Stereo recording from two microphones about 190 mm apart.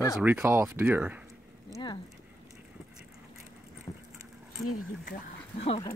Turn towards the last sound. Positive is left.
turn(degrees=30)  # may be behind; listen again after turning